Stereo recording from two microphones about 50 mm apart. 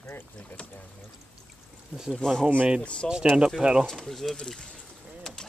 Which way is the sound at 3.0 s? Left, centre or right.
Centre.